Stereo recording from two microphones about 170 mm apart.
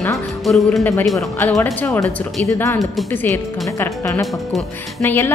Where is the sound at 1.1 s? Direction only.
15° left (ahead or behind).